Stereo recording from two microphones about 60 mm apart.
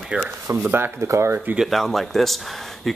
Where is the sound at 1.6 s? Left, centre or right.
Centre.